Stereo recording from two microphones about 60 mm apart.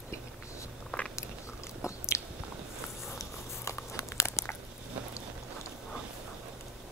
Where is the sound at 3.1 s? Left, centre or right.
Left.